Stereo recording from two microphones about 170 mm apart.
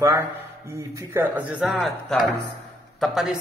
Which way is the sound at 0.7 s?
15° right (ahead or behind).